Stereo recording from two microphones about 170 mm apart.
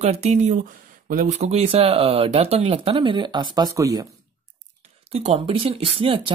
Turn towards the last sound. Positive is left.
turn(degrees=-30)  # may be behind; listen again after turning